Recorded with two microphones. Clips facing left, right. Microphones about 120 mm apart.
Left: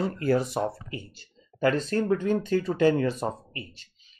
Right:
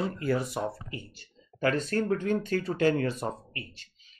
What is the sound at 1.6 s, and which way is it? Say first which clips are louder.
Speech: left 3 dB; 25° left (ahead or behind).